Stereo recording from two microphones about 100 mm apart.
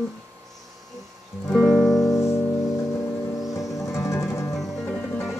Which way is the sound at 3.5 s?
35° left (ahead or behind).